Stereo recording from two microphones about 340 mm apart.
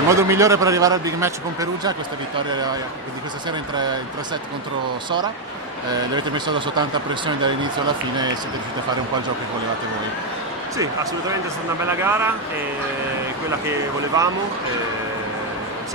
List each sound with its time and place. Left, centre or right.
0.1 s a man's voice: centre
6.1 s a man's voice: centre
11.8 s a man's voice: centre
13.5 s a man's voice: centre